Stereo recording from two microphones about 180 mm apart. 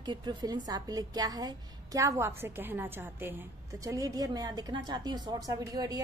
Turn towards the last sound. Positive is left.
turn(degrees=-20)  # may be behind; listen again after turning